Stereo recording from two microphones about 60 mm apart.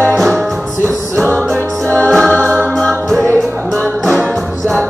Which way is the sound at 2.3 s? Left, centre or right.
Centre.